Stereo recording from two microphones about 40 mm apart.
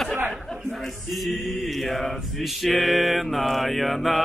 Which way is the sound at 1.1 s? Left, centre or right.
Centre.